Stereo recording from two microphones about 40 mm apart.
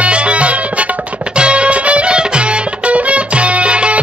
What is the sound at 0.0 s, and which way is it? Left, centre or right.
Music, right.